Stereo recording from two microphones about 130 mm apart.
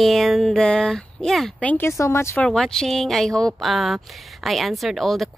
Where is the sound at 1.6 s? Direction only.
15° left (ahead or behind).